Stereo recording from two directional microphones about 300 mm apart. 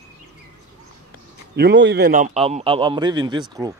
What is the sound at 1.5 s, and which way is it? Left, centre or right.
A man's voice, right.